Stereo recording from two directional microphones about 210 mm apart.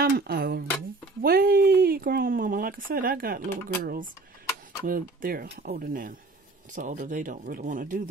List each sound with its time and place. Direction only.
0.0 s speech: 45° right (ahead or behind)
1.2 s a sound: 45° right (ahead or behind)
3.8 s speech: 45° right (ahead or behind)